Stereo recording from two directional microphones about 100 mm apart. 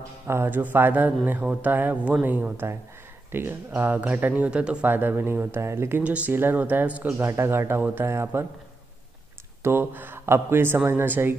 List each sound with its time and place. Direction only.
0.3 s speech: 20° right (ahead or behind)
9.6 s speech: 20° right (ahead or behind)